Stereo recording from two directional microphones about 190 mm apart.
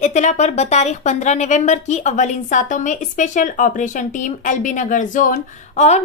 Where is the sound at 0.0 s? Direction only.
40° left (ahead or behind).